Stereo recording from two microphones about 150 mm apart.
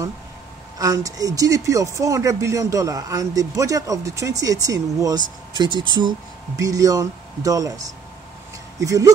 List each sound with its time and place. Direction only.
0.7 s speech: 25° right (ahead or behind)